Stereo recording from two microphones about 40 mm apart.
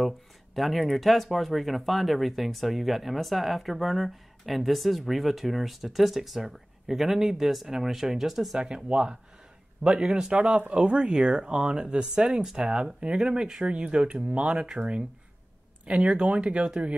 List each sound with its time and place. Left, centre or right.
0.6 s speech: centre
8.5 s speech: right
9.8 s speech: centre
10.3 s speech: right
11.0 s speech: right